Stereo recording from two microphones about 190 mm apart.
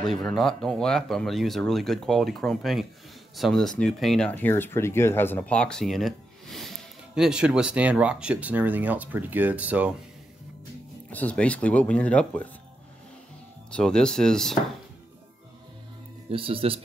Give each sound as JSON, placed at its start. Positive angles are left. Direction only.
{"t": 0.0, "sound": "speech", "side_deg": 0}
{"t": 11.1, "sound": "speech", "side_deg": 10}
{"t": 13.7, "sound": "speech", "side_deg": 5}
{"t": 16.3, "sound": "speech", "side_deg": -30}